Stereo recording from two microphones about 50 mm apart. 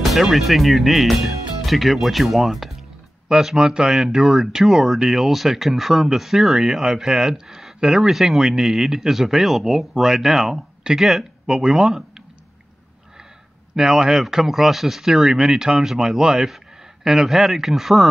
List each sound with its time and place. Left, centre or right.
0.0 s speech: centre
13.7 s a man's voice: centre